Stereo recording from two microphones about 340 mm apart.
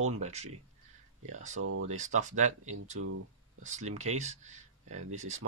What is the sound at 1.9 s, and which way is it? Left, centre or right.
Speech, right.